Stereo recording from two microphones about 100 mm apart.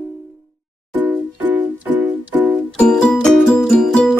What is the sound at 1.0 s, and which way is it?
Music, 15° right (ahead or behind).